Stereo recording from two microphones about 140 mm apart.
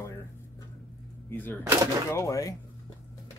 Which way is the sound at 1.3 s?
15° left (ahead or behind).